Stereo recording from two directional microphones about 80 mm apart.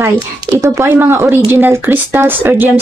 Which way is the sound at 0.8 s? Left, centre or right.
Right.